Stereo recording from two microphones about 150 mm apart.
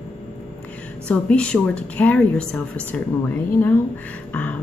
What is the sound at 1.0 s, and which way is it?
A woman's voice, 5° left (ahead or behind).